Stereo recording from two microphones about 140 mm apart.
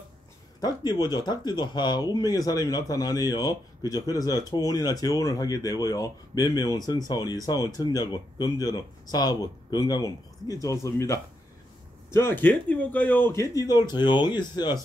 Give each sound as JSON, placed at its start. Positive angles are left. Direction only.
{"t": 0.6, "sound": "speech", "side_deg": 30}